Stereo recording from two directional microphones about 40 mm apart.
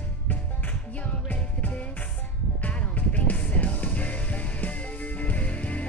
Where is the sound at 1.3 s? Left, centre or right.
Left.